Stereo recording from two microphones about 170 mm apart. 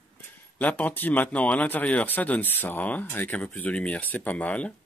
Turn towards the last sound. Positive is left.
turn(degrees=10)  # may be behind; listen again after turning